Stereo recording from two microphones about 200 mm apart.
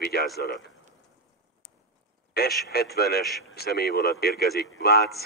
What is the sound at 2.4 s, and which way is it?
Speech, 50° left (ahead or behind).